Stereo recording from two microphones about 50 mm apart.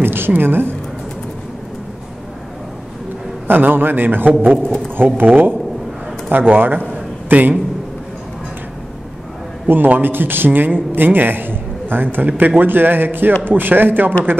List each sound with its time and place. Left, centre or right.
0.0 s a woman's voice: right
3.4 s a man's voice: right
9.7 s a man's voice: right